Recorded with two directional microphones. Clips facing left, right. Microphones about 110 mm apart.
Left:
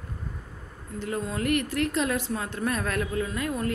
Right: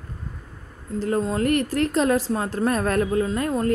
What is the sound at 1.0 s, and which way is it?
A woman's voice, 35° right (ahead or behind).